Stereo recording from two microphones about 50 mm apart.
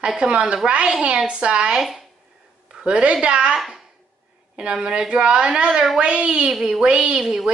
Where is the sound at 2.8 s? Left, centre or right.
Right.